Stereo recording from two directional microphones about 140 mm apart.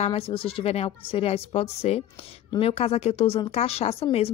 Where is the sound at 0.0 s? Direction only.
40° left (ahead or behind).